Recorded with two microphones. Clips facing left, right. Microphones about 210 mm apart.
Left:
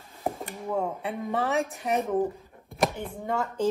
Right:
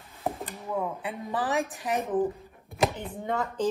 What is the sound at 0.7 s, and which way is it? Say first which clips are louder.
Speech: left 2 dB; 30° left (ahead or behind).